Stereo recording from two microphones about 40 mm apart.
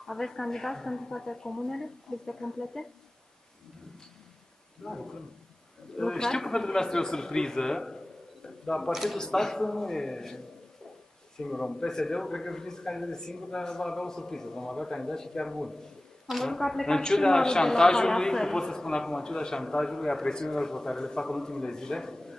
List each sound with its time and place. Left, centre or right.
0.0 s a man's voice: centre
4.8 s a man's voice: centre